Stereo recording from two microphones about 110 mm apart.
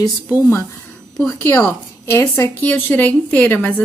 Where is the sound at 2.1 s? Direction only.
25° left (ahead or behind).